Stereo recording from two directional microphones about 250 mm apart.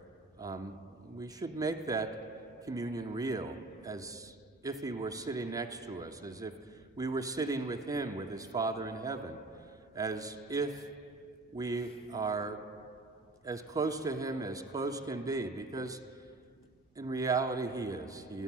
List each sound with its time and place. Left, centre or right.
0.4 s a man's voice: centre